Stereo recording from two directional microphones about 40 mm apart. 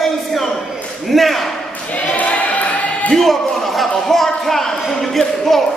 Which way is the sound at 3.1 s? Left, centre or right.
Centre.